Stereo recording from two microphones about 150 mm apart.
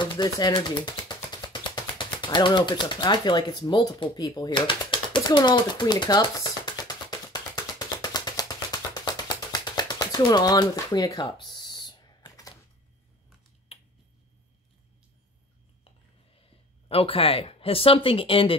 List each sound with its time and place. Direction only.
0.0 s music: 30° left (ahead or behind)
2.2 s a sound: 30° left (ahead or behind)
13.7 s finger snapping: 40° left (ahead or behind)
16.9 s speech: 40° left (ahead or behind)